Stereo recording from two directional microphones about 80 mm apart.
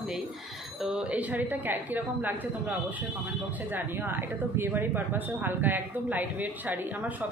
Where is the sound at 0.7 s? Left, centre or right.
Centre.